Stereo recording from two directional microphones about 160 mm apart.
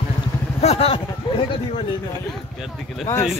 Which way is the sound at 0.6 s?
40° left (ahead or behind).